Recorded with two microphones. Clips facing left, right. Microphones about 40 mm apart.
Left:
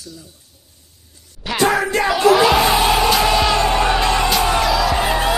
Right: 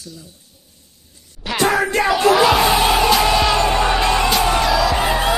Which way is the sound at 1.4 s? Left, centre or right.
Centre.